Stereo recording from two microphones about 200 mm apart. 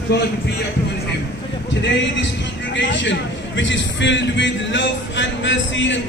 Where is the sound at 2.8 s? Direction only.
65° left (ahead or behind).